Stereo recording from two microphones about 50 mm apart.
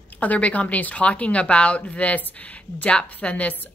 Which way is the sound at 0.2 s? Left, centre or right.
Left.